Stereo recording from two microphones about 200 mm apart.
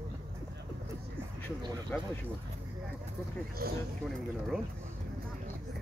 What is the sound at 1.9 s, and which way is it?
Speech, 10° left (ahead or behind).